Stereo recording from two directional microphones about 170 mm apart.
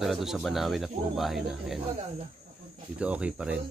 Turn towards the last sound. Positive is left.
turn(degrees=-5)  # may be behind; listen again after turning